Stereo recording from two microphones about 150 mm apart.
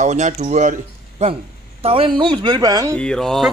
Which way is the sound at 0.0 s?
50° right (ahead or behind).